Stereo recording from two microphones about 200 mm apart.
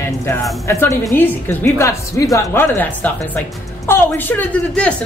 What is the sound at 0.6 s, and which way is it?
A woman's voice, 15° left (ahead or behind).